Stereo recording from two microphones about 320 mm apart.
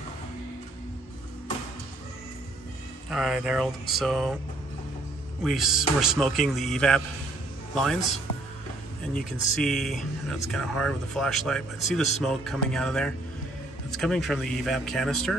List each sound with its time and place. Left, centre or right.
3.1 s speech: centre
5.4 s a man's voice: centre
9.6 s speech: centre